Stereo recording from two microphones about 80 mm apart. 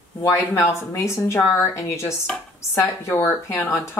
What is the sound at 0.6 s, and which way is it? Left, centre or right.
Speech, left.